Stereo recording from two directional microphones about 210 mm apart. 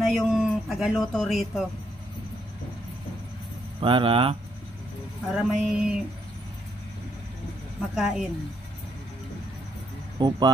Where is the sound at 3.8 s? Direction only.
25° right (ahead or behind).